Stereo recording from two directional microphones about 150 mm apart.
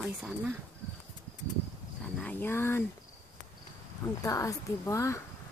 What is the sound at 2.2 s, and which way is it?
Speech, 10° left (ahead or behind).